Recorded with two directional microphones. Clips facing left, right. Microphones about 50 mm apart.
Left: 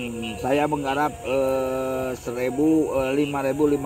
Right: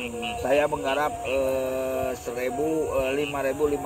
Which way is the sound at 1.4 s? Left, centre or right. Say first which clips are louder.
Left 4 dB; left.